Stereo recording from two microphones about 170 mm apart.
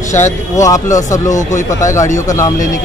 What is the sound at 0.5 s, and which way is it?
Speech, 20° left (ahead or behind).